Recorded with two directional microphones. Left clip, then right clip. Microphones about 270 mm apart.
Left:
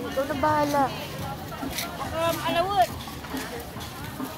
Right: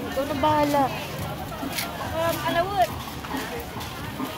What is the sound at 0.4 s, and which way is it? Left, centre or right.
Speech, centre.